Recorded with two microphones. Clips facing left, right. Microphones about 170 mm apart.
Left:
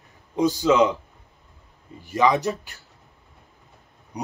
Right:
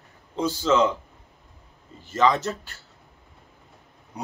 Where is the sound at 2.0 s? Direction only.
15° left (ahead or behind).